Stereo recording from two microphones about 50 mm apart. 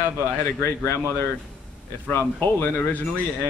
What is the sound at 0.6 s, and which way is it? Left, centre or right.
A man's voice, left.